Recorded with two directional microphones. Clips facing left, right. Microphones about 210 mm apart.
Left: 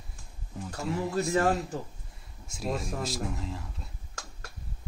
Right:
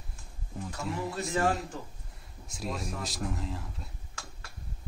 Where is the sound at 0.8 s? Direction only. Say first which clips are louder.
Left 5 dB; centre (ahead or behind).